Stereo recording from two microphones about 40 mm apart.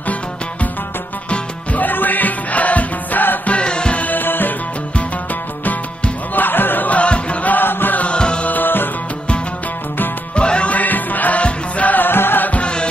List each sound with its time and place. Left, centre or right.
1.3 s music: left
3.4 s music: left
4.0 s music: left
6.3 s music: left
6.9 s music: left
7.5 s chant: left
8.0 s music: left
8.5 s music: left
10.3 s music: left
10.7 s music: left
12.0 s music: left
12.4 s music: left